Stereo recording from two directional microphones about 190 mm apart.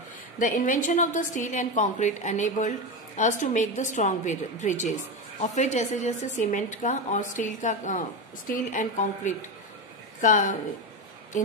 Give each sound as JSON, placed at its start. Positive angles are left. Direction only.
{"t": 0.4, "sound": "a woman's voice", "side_deg": 45}